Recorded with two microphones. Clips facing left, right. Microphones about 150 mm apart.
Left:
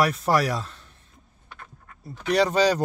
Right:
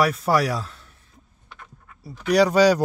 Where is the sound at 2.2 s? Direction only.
10° right (ahead or behind).